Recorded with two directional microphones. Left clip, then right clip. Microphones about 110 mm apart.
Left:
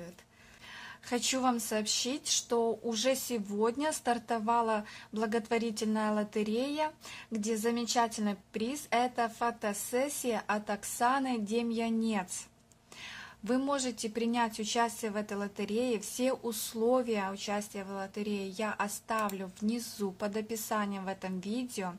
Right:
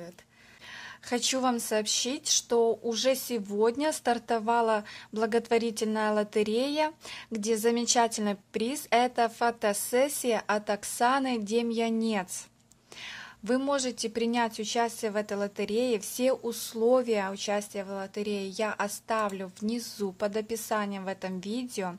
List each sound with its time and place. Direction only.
1.1 s a woman's voice: 30° right (ahead or behind)